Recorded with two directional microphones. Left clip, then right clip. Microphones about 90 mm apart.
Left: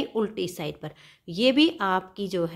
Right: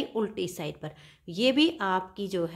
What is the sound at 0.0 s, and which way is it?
Speech, 20° left (ahead or behind).